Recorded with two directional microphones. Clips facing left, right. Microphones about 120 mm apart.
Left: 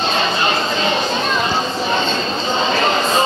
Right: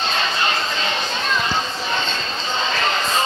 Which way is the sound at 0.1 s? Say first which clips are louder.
Left 4 dB; 20° left (ahead or behind).